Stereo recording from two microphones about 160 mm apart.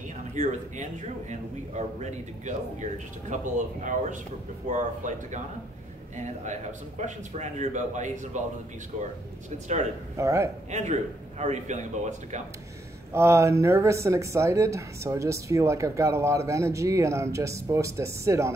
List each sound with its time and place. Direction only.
0.3 s a man's voice: 50° right (ahead or behind)
10.1 s speech: 20° right (ahead or behind)
10.7 s a man's voice: 45° right (ahead or behind)
13.1 s speech: 15° right (ahead or behind)